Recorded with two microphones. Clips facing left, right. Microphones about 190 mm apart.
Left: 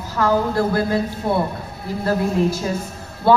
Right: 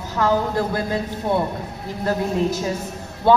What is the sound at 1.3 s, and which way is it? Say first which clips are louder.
Speech: even; 10° left (ahead or behind).